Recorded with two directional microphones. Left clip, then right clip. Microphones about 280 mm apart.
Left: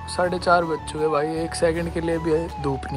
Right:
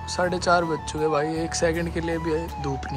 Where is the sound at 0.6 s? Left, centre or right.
Centre.